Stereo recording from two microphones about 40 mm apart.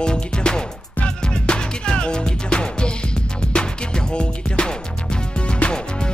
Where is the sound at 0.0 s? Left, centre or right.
Left.